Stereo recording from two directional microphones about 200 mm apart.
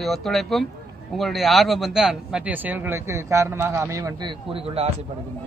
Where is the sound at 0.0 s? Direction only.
Centre (ahead or behind); by 4.9 s 30° right (ahead or behind).